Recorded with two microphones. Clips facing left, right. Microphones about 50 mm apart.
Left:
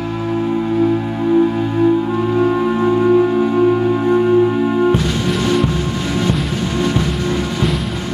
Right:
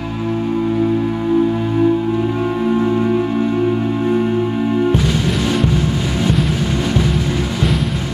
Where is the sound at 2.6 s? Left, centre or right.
Centre.